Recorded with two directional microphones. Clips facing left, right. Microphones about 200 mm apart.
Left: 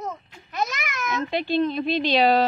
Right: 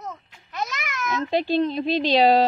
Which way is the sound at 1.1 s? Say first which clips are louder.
Right 3 dB; 35° right (ahead or behind).